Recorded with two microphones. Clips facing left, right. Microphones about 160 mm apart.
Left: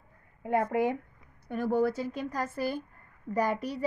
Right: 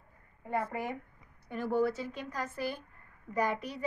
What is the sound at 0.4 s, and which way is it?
Speech, 70° left (ahead or behind).